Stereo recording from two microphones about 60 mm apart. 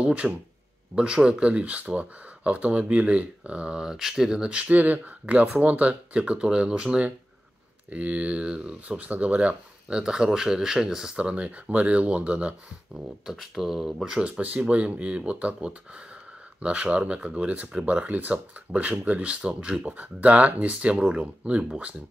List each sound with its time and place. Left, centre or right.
0.0 s speech: right
8.9 s speech: right
12.9 s speech: centre
14.2 s speech: right